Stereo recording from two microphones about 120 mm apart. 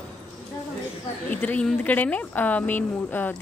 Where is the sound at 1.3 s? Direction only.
15° left (ahead or behind).